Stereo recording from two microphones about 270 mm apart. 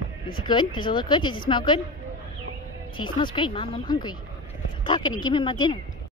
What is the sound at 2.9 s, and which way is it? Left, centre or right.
Speech, centre.